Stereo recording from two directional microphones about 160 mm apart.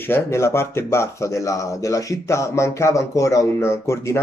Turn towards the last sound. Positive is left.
turn(degrees=15)  # may be behind; listen again after turning